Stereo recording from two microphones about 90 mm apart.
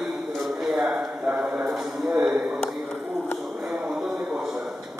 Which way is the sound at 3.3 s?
Centre (ahead or behind).